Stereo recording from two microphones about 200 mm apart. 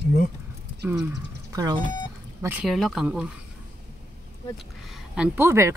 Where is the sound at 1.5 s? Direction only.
15° right (ahead or behind).